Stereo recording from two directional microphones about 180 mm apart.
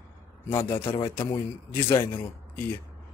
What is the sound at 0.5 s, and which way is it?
Speech, 15° left (ahead or behind).